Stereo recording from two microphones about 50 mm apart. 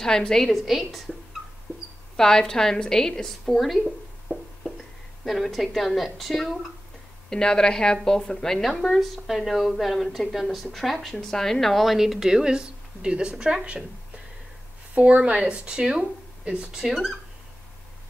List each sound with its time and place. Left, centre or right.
0.0 s a woman's voice: centre
0.6 s a woman's voice: centre
2.1 s a woman's voice: centre
3.5 s a woman's voice: centre
5.2 s a woman's voice: centre
15.0 s speech: right
16.9 s a woman's voice: centre